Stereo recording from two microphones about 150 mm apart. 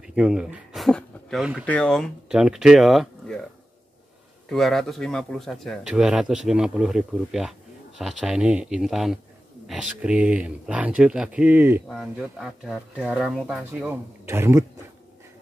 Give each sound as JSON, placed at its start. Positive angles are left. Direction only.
{"t": 0.0, "sound": "a sound", "side_deg": -5}
{"t": 1.7, "sound": "speech", "side_deg": 5}
{"t": 4.5, "sound": "speech", "side_deg": 0}
{"t": 11.9, "sound": "speech", "side_deg": 0}